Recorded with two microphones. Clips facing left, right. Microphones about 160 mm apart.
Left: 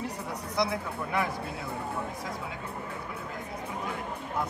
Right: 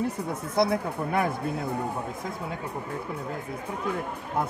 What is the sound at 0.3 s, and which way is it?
Speech, 50° right (ahead or behind).